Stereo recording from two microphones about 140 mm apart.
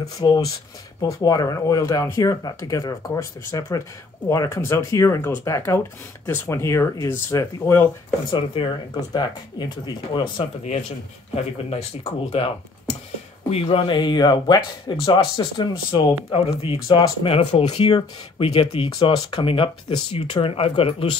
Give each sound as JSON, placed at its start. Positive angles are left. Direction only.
{"t": 0.0, "sound": "speech", "side_deg": 25}
{"t": 8.3, "sound": "speech", "side_deg": 35}
{"t": 11.3, "sound": "speech", "side_deg": 45}